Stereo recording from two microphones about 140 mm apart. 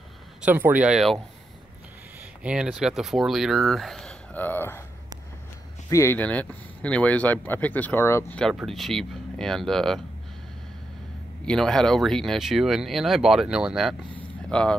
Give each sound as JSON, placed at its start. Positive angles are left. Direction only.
{"t": 0.4, "sound": "speech", "side_deg": -10}
{"t": 2.4, "sound": "speech", "side_deg": -5}
{"t": 5.9, "sound": "speech", "side_deg": 20}
{"t": 8.4, "sound": "speech", "side_deg": 0}
{"t": 11.4, "sound": "speech", "side_deg": 5}